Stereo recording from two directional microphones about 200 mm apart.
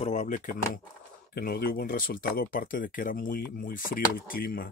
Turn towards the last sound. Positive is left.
turn(degrees=45)  # may be behind; listen again after turning